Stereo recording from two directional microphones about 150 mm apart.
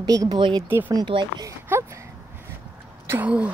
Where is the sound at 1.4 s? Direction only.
20° right (ahead or behind).